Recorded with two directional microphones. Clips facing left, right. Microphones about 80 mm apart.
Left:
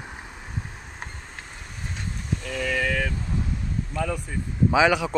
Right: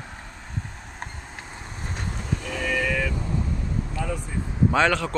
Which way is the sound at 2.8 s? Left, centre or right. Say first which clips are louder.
Even; left.